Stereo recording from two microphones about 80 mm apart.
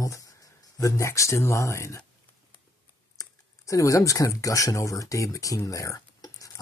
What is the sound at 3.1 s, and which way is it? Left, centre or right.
Speech, left.